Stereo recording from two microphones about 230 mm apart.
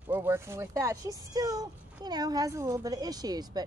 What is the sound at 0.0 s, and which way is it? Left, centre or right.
Speech, centre.